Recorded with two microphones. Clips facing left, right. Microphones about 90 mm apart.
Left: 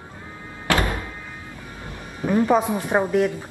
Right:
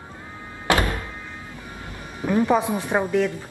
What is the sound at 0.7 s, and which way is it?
Music, 20° right (ahead or behind).